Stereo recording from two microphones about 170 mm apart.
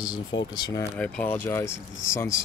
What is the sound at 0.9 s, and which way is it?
Speech, 5° left (ahead or behind).